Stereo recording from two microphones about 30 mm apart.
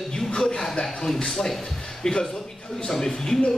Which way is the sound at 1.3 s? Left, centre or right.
Centre.